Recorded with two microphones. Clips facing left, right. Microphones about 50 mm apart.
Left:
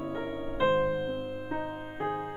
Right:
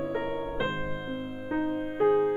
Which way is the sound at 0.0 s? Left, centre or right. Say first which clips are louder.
Right 4 dB; right.